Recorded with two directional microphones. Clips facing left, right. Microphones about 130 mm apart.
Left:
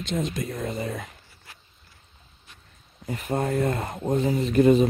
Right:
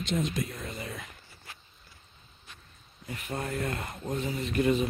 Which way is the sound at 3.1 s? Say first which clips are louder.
Left 9 dB; 40° left (ahead or behind).